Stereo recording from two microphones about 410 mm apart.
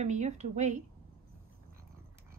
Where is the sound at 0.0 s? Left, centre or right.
Centre.